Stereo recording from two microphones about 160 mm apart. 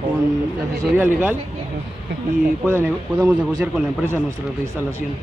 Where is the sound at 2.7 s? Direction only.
15° right (ahead or behind).